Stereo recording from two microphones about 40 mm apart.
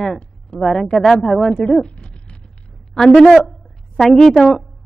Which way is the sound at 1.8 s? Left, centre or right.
Left.